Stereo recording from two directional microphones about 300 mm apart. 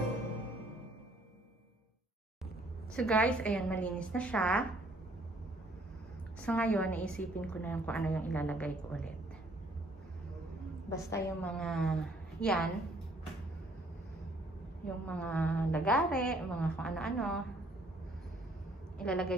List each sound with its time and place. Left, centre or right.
2.9 s a woman's voice: centre
6.4 s a woman's voice: centre
10.9 s a woman's voice: centre
15.0 s a woman's voice: centre
18.9 s a woman's voice: centre